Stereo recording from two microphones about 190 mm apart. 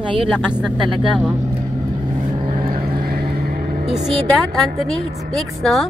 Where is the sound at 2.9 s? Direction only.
50° right (ahead or behind).